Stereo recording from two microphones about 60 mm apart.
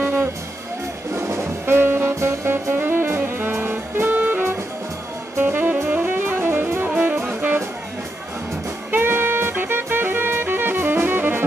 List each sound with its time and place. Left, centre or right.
0.0 s music: right
1.1 s music: right
5.4 s jazz: right
5.9 s music: right
8.9 s saxophone: right